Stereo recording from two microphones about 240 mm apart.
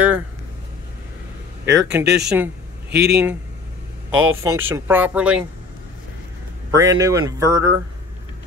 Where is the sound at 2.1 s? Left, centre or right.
Centre.